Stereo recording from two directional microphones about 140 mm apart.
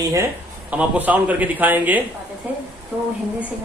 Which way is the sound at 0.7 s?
10° right (ahead or behind).